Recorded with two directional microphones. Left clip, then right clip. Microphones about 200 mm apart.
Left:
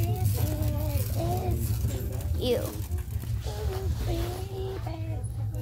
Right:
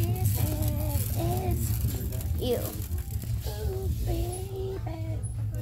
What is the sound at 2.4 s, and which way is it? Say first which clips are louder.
Music: left 2 dB; 15° left (ahead or behind).